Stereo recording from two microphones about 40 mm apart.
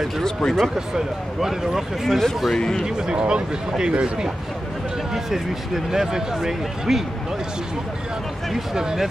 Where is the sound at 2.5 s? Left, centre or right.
Centre.